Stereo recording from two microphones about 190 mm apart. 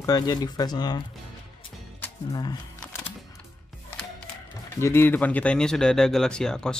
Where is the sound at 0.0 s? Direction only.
20° left (ahead or behind).